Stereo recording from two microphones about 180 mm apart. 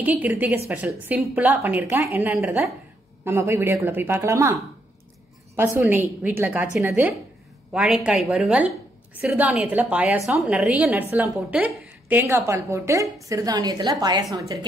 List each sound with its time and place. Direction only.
0.0 s a woman's voice: 10° right (ahead or behind)
5.6 s a woman's voice: 10° right (ahead or behind)